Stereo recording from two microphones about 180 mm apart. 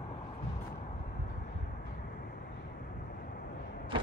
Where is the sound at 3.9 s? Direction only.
30° right (ahead or behind).